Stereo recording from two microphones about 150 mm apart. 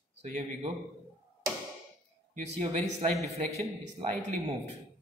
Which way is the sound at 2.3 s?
50° right (ahead or behind).